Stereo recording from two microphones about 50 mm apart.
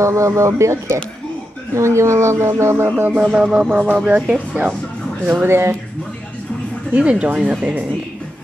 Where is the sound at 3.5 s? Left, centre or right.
Right.